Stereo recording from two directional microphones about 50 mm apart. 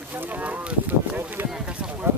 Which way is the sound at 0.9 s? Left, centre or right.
Right.